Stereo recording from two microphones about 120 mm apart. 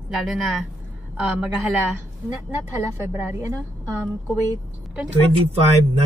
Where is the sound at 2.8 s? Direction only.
25° right (ahead or behind).